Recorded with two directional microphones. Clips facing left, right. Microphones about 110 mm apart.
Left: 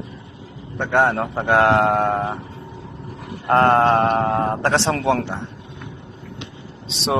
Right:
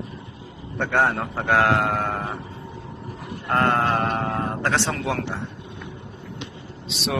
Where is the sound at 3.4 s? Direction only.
35° left (ahead or behind).